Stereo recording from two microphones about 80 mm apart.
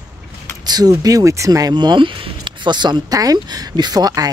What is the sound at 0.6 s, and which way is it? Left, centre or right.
Speech, right.